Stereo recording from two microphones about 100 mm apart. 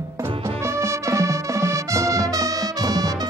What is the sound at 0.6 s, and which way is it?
Music, 25° right (ahead or behind).